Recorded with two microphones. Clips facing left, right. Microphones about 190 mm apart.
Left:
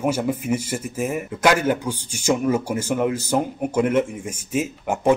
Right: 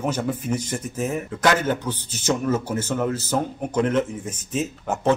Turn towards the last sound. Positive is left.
turn(degrees=10)  # may be behind; listen again after turning